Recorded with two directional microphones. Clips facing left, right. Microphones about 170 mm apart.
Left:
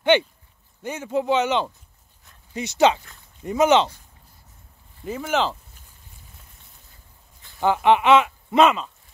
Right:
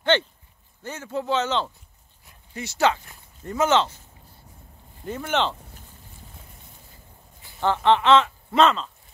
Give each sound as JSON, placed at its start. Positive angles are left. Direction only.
{"t": 0.0, "sound": "speech", "side_deg": 15}
{"t": 5.0, "sound": "speech", "side_deg": 5}
{"t": 7.6, "sound": "speech", "side_deg": 10}